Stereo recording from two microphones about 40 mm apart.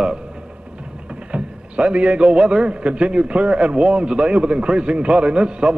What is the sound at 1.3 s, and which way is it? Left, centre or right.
A man's voice, right.